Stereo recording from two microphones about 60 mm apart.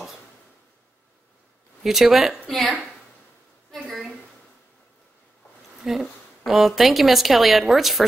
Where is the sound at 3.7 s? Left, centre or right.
Centre.